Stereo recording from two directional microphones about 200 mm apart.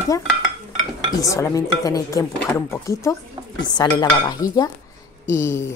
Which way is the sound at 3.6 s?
20° left (ahead or behind).